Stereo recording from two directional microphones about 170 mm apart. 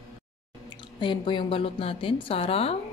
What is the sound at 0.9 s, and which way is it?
Mantra, 30° left (ahead or behind).